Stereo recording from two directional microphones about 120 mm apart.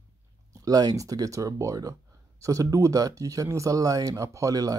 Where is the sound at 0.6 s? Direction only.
30° right (ahead or behind).